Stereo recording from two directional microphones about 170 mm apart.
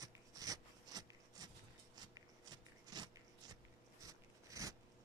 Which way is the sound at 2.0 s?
25° right (ahead or behind).